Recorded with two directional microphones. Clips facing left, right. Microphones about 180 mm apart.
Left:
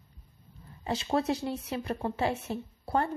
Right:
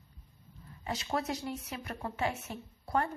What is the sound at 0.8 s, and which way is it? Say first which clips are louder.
A woman's voice: left 6 dB; 30° left (ahead or behind).